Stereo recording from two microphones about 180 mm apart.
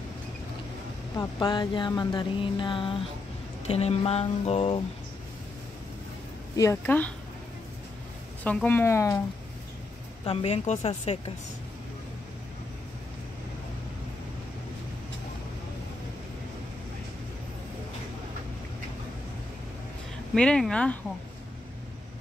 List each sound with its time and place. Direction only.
1.1 s a sound: 25° left (ahead or behind)
3.6 s speech: 35° left (ahead or behind)
6.5 s speech: 15° left (ahead or behind)
8.5 s speech: 10° left (ahead or behind)
10.2 s speech: 35° left (ahead or behind)
20.3 s speech: 5° left (ahead or behind)